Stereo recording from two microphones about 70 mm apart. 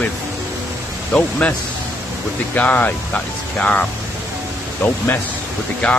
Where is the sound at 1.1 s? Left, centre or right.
Centre.